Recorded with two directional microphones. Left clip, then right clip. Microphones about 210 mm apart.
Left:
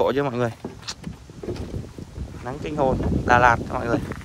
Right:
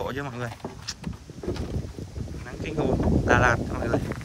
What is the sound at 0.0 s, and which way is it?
Speech, 5° right (ahead or behind).